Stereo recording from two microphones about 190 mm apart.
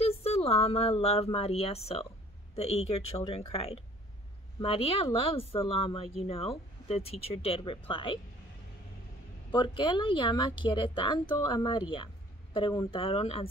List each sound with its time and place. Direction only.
0.0 s a woman's voice: 30° left (ahead or behind)
9.5 s a woman's voice: 25° left (ahead or behind)